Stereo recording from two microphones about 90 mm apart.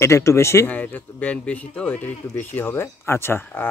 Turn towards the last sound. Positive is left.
turn(degrees=25)  # may be behind; listen again after turning